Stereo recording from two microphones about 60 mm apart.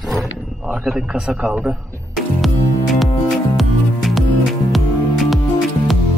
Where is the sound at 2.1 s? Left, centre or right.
Centre.